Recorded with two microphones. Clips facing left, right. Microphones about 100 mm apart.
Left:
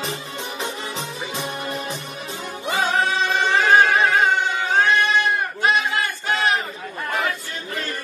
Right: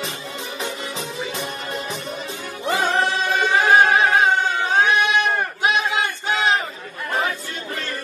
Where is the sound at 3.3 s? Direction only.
15° right (ahead or behind).